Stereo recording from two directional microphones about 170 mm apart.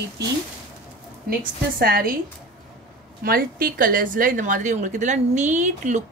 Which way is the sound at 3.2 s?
60° right (ahead or behind).